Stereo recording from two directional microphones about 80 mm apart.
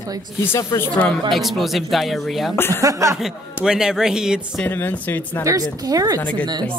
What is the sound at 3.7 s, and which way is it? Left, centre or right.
Speech, centre.